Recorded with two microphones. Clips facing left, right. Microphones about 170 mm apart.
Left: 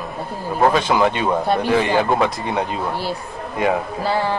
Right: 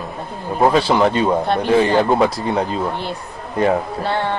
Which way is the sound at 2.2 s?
35° right (ahead or behind).